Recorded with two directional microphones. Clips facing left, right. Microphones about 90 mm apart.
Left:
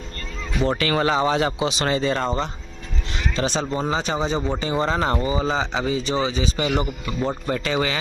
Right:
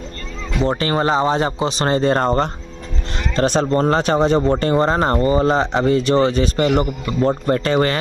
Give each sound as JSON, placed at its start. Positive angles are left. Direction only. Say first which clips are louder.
{"t": 0.6, "sound": "speech", "louder": "right 3 dB", "side_deg": -30}
{"t": 3.2, "sound": "vehicle", "louder": "right 6 dB", "side_deg": -50}
{"t": 3.7, "sound": "speech", "louder": "right 7 dB", "side_deg": -60}
{"t": 5.3, "sound": "speech", "louder": "right 7 dB", "side_deg": -55}